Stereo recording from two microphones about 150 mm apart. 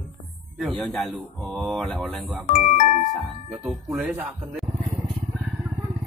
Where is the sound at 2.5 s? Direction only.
60° left (ahead or behind).